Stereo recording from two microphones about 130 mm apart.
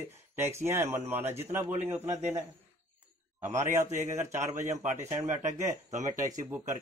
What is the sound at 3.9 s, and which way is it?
Speech, 70° right (ahead or behind).